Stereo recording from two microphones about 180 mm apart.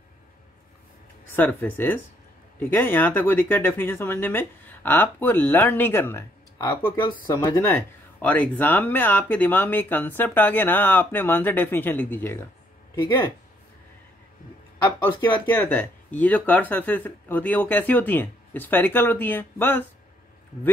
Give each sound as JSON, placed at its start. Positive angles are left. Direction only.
{"t": 1.3, "sound": "speech", "side_deg": 10}
{"t": 7.7, "sound": "speech", "side_deg": 10}
{"t": 14.9, "sound": "speech", "side_deg": 25}
{"t": 15.4, "sound": "speech", "side_deg": 10}